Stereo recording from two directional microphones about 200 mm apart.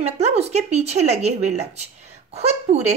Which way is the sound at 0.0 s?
30° right (ahead or behind).